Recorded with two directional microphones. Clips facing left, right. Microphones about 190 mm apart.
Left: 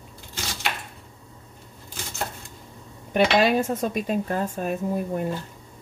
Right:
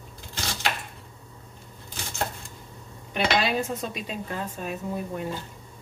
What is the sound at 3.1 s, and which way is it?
Speech, 50° left (ahead or behind).